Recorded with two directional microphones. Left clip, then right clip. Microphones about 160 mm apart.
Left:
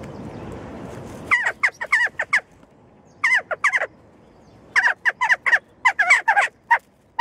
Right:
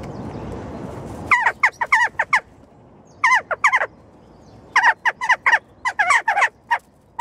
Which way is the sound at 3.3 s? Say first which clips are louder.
Right 2 dB; centre (ahead or behind).